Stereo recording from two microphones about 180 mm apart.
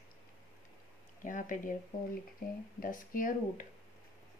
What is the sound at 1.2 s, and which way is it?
Speech, 45° left (ahead or behind).